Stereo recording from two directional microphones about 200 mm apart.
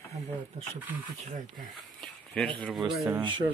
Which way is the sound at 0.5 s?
30° right (ahead or behind).